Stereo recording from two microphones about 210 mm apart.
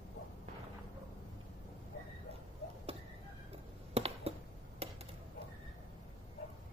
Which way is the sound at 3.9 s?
30° right (ahead or behind).